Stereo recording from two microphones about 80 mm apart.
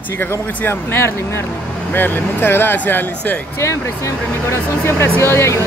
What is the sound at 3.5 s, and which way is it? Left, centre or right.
Speech, left.